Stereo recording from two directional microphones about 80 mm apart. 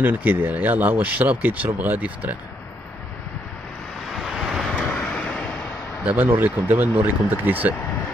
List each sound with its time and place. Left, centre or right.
0.0 s speech: right
4.1 s vehicle: centre
6.0 s speech: right